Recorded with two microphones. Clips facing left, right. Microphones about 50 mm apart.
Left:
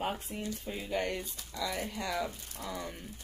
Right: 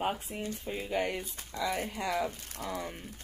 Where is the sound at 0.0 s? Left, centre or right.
Centre.